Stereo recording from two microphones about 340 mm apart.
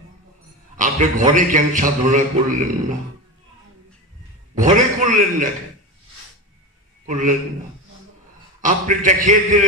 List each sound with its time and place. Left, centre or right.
0.7 s a man's voice: right
4.6 s a man's voice: right
7.1 s a man's voice: right
8.5 s a man's voice: right